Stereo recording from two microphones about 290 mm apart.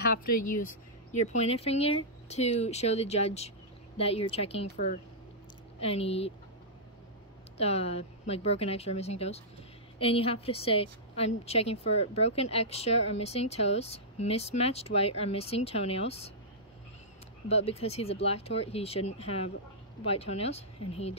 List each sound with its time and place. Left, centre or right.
0.0 s speech: left
1.1 s a woman's voice: left
7.5 s a woman's voice: left
17.5 s a woman's voice: left